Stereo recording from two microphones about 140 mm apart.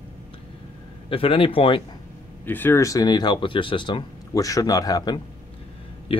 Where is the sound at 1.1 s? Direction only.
40° left (ahead or behind).